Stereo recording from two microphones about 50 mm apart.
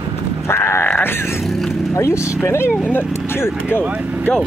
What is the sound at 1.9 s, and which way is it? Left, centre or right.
Vehicle, left.